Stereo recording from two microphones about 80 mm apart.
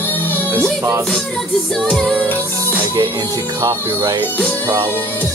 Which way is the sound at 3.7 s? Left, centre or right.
Right.